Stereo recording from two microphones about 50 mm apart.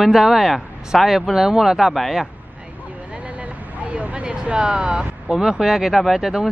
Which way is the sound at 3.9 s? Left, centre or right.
Right.